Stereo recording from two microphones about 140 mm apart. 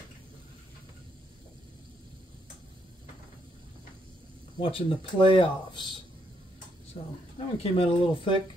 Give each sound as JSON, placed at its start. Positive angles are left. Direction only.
{"t": 4.6, "sound": "speech", "side_deg": 40}
{"t": 7.5, "sound": "speech", "side_deg": 45}